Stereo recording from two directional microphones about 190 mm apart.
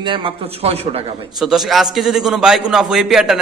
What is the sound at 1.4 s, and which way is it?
A man's voice, centre (ahead or behind).